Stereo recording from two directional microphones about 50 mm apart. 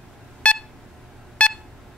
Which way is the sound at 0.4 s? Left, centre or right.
Left.